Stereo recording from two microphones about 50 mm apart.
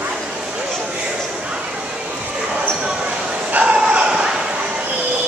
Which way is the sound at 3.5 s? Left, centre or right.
Right.